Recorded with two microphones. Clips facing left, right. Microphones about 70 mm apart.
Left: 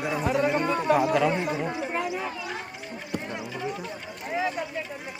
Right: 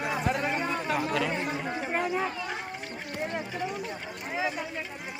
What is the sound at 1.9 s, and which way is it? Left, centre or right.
Speech, right.